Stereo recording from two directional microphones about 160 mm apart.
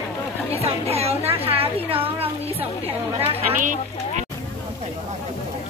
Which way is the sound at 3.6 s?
55° right (ahead or behind).